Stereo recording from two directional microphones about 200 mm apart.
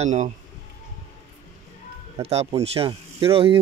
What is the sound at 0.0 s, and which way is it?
Speech, 35° right (ahead or behind).